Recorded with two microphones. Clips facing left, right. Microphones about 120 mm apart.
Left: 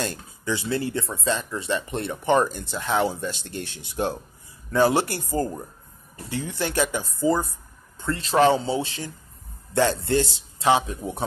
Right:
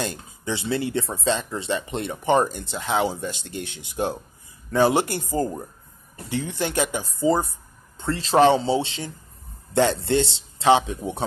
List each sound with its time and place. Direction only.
0.0 s speech: 20° right (ahead or behind)